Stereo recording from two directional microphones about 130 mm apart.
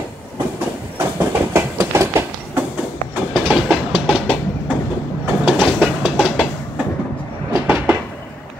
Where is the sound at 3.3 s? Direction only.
Centre (ahead or behind).